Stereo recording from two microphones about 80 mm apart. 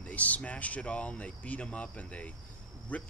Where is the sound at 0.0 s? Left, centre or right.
Centre.